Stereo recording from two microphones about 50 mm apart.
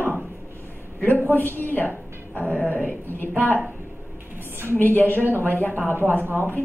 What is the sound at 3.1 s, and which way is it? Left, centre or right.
Speech, left.